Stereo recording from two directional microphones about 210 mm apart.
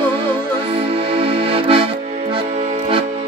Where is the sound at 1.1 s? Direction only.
25° right (ahead or behind).